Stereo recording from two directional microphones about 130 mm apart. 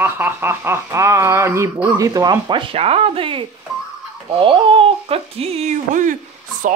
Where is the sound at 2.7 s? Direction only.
50° right (ahead or behind).